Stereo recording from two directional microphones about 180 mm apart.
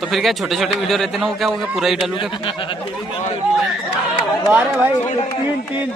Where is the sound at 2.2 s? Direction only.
30° left (ahead or behind).